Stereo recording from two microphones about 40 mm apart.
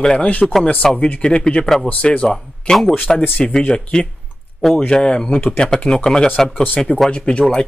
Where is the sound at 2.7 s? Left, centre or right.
Left.